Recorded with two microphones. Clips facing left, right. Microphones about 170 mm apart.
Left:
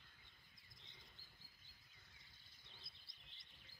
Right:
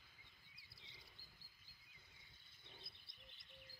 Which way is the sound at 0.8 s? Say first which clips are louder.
Right 1 dB; 10° right (ahead or behind).